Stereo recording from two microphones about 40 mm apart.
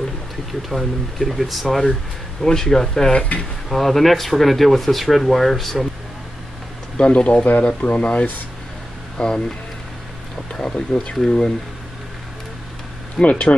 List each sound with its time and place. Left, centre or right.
0.5 s speech: centre
2.4 s speech: centre
3.6 s speech: centre
7.0 s speech: left
7.4 s speech: left
9.2 s speech: left
10.6 s speech: left
13.2 s speech: left